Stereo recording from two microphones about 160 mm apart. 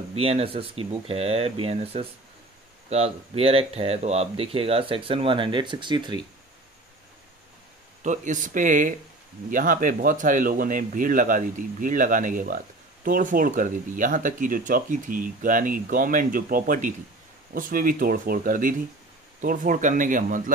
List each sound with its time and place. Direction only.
0.1 s speech: 40° right (ahead or behind)
8.0 s speech: 50° right (ahead or behind)